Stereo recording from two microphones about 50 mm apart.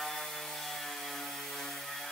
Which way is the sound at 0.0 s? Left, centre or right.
Centre.